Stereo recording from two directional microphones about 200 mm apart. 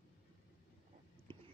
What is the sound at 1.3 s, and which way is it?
Whispering, 25° right (ahead or behind).